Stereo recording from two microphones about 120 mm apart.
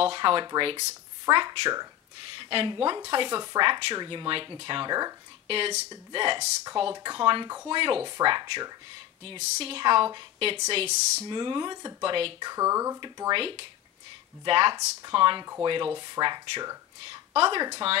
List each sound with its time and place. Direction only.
0.0 s speech: 45° right (ahead or behind)
0.7 s speech: 35° right (ahead or behind)
2.3 s speech: 45° right (ahead or behind)
5.5 s speech: 60° right (ahead or behind)
6.1 s speech: 45° right (ahead or behind)
9.4 s speech: 55° right (ahead or behind)
10.7 s speech: 60° right (ahead or behind)
11.2 s speech: 40° right (ahead or behind)
12.4 s speech: 30° right (ahead or behind)
13.3 s speech: 45° right (ahead or behind)
14.8 s speech: 30° right (ahead or behind)
15.1 s speech: 45° right (ahead or behind)